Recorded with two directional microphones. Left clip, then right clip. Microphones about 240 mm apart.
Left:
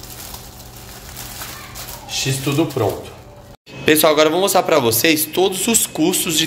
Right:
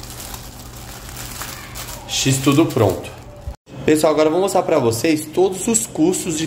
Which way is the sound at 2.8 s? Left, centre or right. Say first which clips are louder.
Right 3 dB; right.